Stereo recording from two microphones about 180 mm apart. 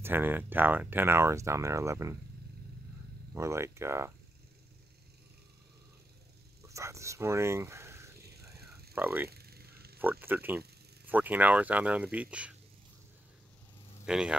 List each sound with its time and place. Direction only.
0.0 s speech: 10° right (ahead or behind)
3.3 s speech: 15° right (ahead or behind)
6.6 s speech: 15° right (ahead or behind)
9.3 s a sound: 60° right (ahead or behind)
10.2 s speech: 10° right (ahead or behind)
14.0 s speech: 5° right (ahead or behind)